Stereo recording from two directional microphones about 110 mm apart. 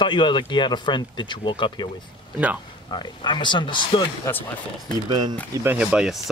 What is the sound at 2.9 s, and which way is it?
Speech, 45° left (ahead or behind).